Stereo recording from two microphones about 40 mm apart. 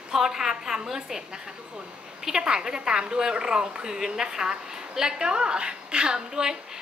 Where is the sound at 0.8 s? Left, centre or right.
Centre.